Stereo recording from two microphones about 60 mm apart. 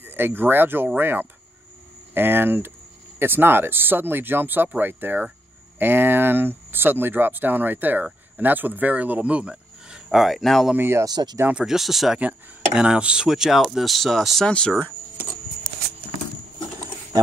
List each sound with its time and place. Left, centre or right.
0.0 s speech: right; by 10.7 s centre
10.8 s speech: right
11.6 s speech: centre
12.2 s speech: right; by 14.4 s centre
14.4 s speech: centre